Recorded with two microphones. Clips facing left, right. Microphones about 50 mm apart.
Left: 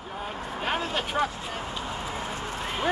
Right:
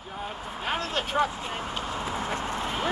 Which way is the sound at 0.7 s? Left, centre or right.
Centre.